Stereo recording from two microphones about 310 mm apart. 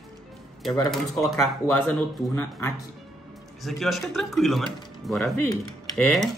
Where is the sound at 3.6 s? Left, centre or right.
Centre.